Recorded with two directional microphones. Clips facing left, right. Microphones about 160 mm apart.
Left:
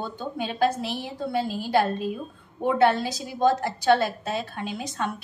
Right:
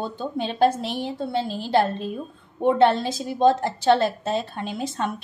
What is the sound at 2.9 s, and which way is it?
A woman's voice, 25° right (ahead or behind).